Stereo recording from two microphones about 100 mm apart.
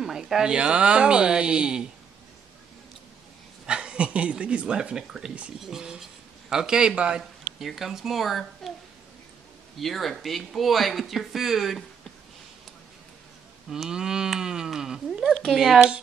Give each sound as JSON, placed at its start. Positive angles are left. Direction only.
{"t": 0.0, "sound": "speech", "side_deg": -5}
{"t": 3.6, "sound": "speech", "side_deg": -10}
{"t": 9.8, "sound": "speech", "side_deg": 0}
{"t": 13.7, "sound": "speech", "side_deg": -5}